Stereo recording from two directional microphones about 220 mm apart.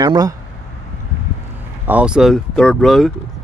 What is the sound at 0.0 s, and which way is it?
Speech, 20° right (ahead or behind).